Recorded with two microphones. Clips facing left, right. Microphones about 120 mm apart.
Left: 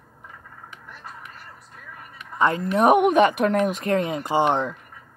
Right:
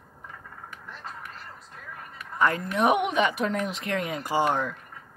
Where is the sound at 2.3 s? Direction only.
25° left (ahead or behind).